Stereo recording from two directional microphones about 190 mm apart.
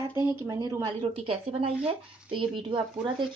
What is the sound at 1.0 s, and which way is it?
A woman's voice, 30° right (ahead or behind).